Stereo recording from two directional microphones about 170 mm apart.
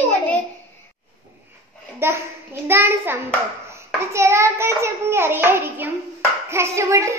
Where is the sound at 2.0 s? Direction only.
15° right (ahead or behind).